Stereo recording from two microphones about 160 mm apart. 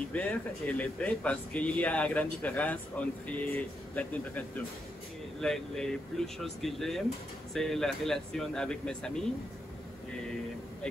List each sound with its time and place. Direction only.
0.1 s a man's voice: 10° left (ahead or behind)